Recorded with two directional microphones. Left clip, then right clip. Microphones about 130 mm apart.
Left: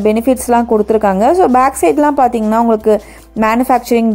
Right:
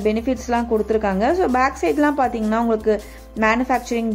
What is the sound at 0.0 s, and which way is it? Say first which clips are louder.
Speech: left 9 dB; 60° left (ahead or behind).